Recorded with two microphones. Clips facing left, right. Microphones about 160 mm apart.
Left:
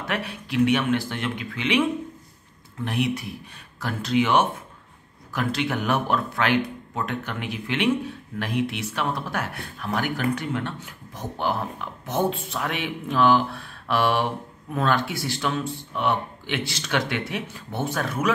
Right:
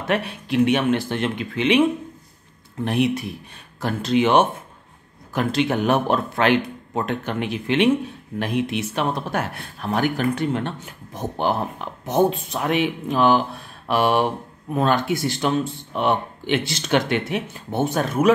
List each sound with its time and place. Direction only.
0.0 s speech: 25° right (ahead or behind)